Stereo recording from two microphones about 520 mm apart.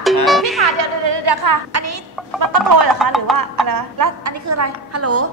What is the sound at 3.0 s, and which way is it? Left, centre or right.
Music, centre.